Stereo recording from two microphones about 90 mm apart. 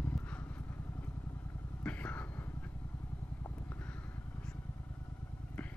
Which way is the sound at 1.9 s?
15° left (ahead or behind).